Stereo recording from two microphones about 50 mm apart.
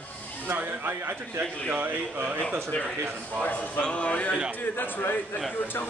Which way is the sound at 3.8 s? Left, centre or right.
Left.